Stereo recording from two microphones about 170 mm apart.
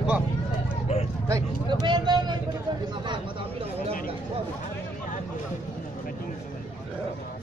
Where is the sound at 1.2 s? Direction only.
20° right (ahead or behind).